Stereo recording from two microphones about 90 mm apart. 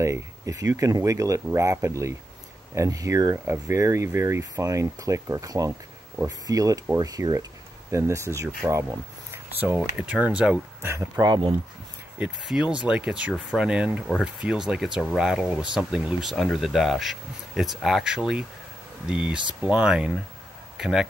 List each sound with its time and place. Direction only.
0.0 s speech: 35° right (ahead or behind)
3.4 s speech: 30° right (ahead or behind)
9.6 s speech: 15° right (ahead or behind)
11.1 s speech: 60° right (ahead or behind)
12.2 s speech: 5° right (ahead or behind)